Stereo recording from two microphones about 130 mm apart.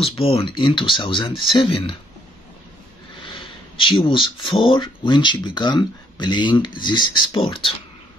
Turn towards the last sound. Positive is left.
turn(degrees=40)  # may be behind; listen again after turning